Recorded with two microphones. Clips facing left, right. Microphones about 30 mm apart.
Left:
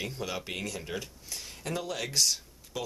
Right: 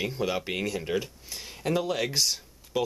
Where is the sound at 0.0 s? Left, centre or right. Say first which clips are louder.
Right 6 dB; centre.